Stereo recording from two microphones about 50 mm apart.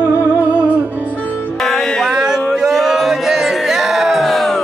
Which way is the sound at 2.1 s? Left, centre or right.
Centre.